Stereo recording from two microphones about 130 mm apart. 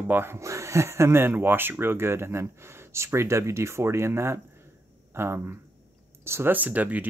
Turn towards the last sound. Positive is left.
turn(degrees=-10)  # may be behind; listen again after turning